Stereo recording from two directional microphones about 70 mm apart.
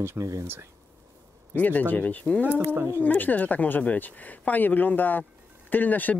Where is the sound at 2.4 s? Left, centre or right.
Right.